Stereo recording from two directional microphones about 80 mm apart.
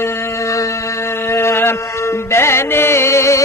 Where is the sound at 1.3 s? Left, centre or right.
Left.